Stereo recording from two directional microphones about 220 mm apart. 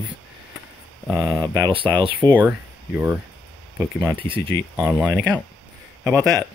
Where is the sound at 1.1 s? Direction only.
Centre (ahead or behind).